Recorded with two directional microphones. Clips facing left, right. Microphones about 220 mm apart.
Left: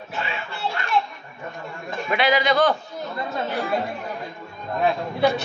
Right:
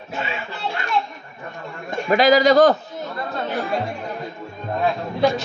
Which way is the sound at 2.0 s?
40° right (ahead or behind).